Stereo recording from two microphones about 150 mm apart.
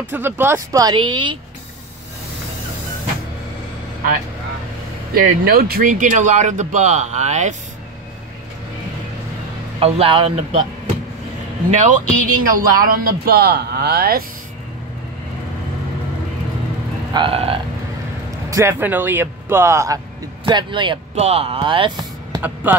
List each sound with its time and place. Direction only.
0.1 s speech: 15° right (ahead or behind); by 1.4 s 30° right (ahead or behind)
5.1 s speech: 80° right; by 7.5 s 50° right (ahead or behind)
9.8 s speech: 40° right (ahead or behind)
11.7 s speech: 55° right (ahead or behind)
12.4 s a man's voice: 75° right (ahead or behind); by 14.2 s 90° right
17.1 s speech: 35° right (ahead or behind)
18.5 s speech: 15° right (ahead or behind)
20.4 s speech: 30° right (ahead or behind)
22.4 s speech: 10° right (ahead or behind)